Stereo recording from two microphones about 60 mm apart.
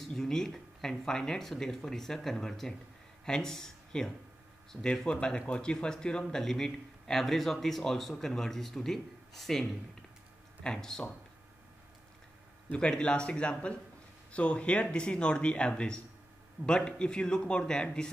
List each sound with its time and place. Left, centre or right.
0.0 s speech: centre
12.7 s speech: centre